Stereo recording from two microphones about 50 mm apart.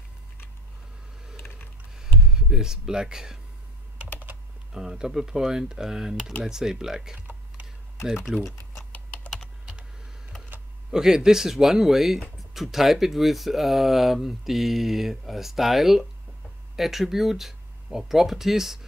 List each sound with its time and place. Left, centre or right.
2.0 s a sound: centre
4.7 s speech: centre
8.3 s speech: right
10.9 s speech: centre